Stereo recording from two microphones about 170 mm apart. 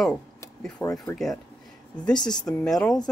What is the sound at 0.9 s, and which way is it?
Speech, 20° left (ahead or behind).